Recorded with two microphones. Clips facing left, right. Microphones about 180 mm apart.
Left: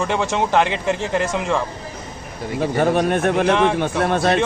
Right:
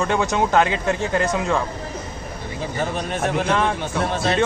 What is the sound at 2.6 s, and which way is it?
Speech, 60° left (ahead or behind).